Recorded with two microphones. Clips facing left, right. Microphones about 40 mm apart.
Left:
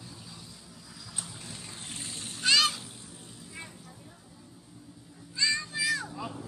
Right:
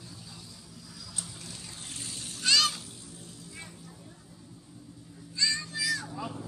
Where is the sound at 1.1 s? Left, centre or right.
Left.